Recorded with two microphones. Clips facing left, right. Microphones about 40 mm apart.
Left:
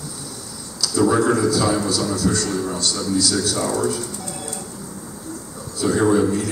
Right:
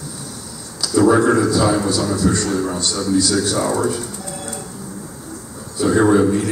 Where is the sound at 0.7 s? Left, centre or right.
Right.